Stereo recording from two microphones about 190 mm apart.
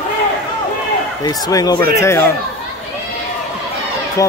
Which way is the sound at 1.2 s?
20° left (ahead or behind).